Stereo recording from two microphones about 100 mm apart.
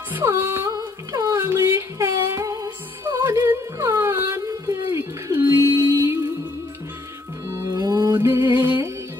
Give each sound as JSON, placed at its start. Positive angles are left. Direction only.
{"t": 0.1, "sound": "music", "side_deg": -25}
{"t": 1.1, "sound": "female singing", "side_deg": -30}
{"t": 3.1, "sound": "music", "side_deg": -25}
{"t": 4.5, "sound": "a sound", "side_deg": -35}
{"t": 5.3, "sound": "music", "side_deg": -20}
{"t": 7.4, "sound": "music", "side_deg": -35}
{"t": 8.2, "sound": "music", "side_deg": -25}